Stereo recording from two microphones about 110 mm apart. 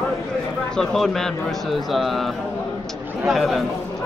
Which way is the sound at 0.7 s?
5° left (ahead or behind).